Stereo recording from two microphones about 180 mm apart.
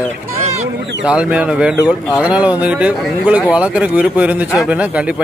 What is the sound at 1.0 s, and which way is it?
Speech, 5° right (ahead or behind).